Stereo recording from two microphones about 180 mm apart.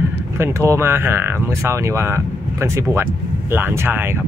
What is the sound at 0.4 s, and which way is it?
Speech, 15° right (ahead or behind).